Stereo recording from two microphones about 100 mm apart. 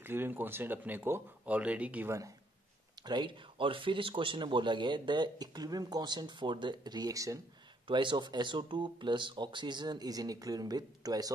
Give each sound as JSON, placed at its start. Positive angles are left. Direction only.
{"t": 0.0, "sound": "speech", "side_deg": -20}
{"t": 2.0, "sound": "speech", "side_deg": -30}
{"t": 3.0, "sound": "speech", "side_deg": -45}
{"t": 7.8, "sound": "speech", "side_deg": -55}